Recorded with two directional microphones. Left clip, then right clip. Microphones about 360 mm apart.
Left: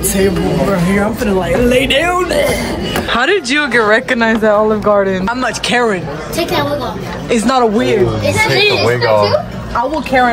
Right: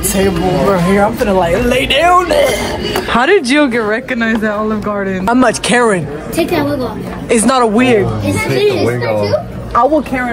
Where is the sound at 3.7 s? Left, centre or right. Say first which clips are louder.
Left 4 dB; centre.